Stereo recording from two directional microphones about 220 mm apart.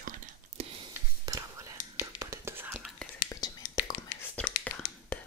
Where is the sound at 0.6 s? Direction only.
25° right (ahead or behind); by 3.1 s 5° right (ahead or behind).